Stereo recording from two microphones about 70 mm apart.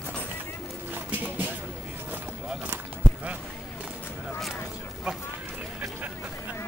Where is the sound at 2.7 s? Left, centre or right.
Centre.